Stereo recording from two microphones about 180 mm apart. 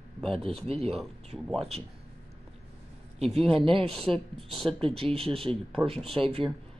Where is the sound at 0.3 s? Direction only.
30° right (ahead or behind).